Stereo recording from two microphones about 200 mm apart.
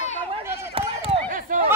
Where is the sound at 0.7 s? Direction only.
30° right (ahead or behind).